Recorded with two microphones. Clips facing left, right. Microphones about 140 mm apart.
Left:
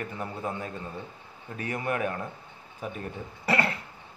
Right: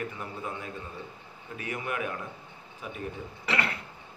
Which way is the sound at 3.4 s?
40° left (ahead or behind).